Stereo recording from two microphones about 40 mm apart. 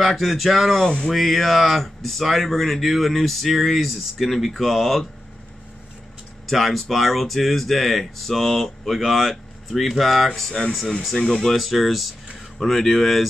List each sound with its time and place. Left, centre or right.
0.0 s speech: centre
0.7 s a sound: left
1.1 s speech: centre
6.4 s speech: centre
11.5 s speech: centre